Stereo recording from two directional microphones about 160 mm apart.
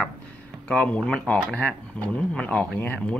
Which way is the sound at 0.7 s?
5° left (ahead or behind).